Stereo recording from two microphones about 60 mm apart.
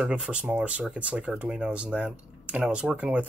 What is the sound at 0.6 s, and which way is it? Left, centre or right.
Speech, right.